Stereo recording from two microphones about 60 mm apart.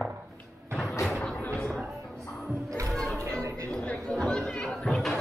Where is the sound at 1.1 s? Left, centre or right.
Centre.